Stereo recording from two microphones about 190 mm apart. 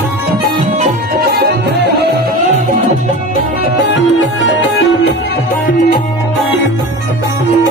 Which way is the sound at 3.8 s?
70° left (ahead or behind).